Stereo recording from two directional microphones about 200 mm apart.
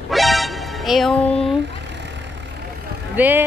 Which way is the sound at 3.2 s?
10° right (ahead or behind).